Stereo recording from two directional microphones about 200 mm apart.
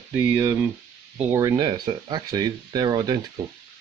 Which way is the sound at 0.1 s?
10° right (ahead or behind).